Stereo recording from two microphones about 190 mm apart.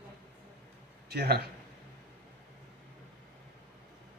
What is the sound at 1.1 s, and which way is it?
Speech, 55° right (ahead or behind).